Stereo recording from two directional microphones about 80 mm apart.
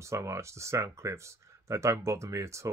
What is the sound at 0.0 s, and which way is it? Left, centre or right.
Speech, right.